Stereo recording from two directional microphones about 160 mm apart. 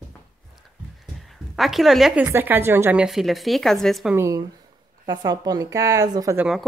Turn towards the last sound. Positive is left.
turn(degrees=0)  # may be behind; listen again after turning